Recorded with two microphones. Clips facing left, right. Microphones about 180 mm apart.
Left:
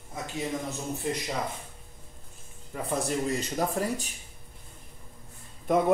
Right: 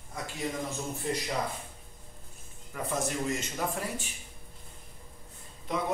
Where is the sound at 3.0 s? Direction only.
35° left (ahead or behind).